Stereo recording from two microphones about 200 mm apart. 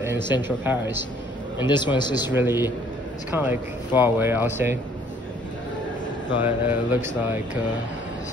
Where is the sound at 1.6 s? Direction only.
20° left (ahead or behind).